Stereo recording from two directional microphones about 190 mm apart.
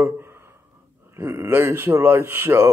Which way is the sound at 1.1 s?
15° right (ahead or behind).